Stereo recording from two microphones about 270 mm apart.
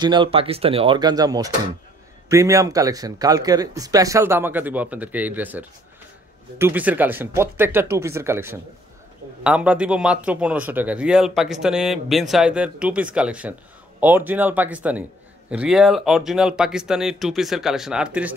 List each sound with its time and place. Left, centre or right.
0.0 s speech: centre